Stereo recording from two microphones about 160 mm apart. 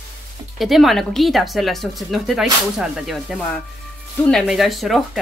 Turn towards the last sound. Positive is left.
turn(degrees=0)  # may be behind; listen again after turning